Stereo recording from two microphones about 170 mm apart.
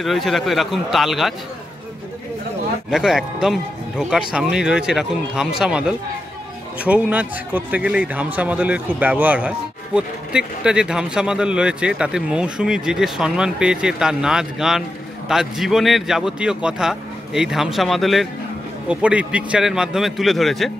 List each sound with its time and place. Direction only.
0.0 s a man's voice: centre (ahead or behind)
2.9 s a man's voice: centre (ahead or behind)